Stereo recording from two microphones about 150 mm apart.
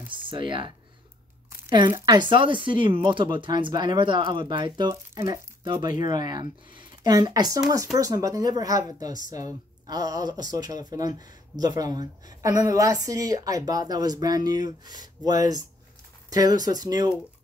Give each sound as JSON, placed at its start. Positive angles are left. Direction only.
{"t": 0.1, "sound": "a woman's voice", "side_deg": -35}